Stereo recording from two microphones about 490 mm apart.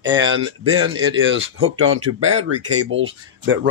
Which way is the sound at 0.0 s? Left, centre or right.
Right.